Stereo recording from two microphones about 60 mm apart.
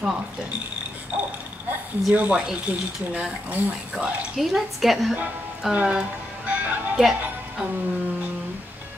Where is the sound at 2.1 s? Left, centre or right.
Right.